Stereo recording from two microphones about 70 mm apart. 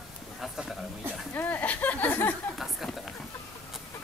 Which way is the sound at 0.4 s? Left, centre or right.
Centre.